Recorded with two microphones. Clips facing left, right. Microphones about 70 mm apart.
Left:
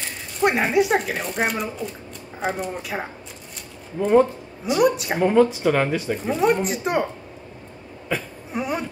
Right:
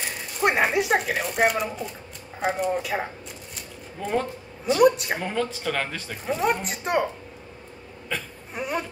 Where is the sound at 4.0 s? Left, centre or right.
Centre.